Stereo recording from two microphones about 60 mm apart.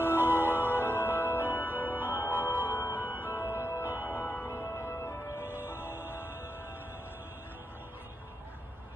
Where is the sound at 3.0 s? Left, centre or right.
Right.